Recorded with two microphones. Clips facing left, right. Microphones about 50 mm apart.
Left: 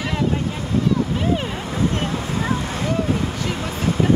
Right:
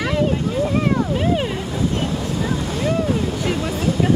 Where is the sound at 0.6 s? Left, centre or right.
Right.